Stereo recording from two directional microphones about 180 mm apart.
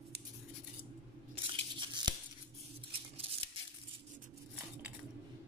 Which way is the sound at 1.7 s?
25° right (ahead or behind).